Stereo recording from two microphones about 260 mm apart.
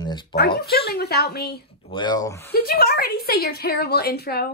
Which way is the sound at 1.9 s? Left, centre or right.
Centre.